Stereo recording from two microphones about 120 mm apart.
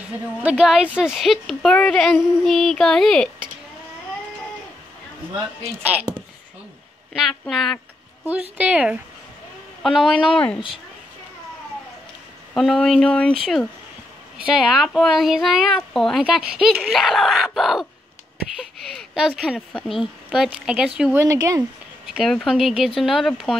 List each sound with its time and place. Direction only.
0.4 s speech: 10° right (ahead or behind)
5.8 s speech: 10° right (ahead or behind)
7.2 s speech: centre (ahead or behind)
8.3 s speech: 10° right (ahead or behind)
12.5 s speech: 5° left (ahead or behind)
19.1 s speech: 5° right (ahead or behind)
21.2 s speech: 25° right (ahead or behind)
21.5 s speech: 5° right (ahead or behind)